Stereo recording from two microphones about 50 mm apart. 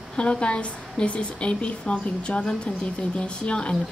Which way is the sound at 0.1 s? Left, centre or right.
Centre.